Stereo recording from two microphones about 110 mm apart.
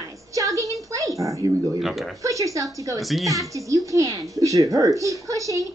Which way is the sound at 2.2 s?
30° right (ahead or behind).